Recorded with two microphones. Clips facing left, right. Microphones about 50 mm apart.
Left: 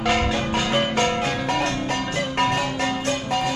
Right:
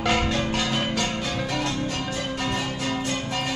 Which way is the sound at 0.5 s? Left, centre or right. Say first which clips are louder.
Left 3 dB; left.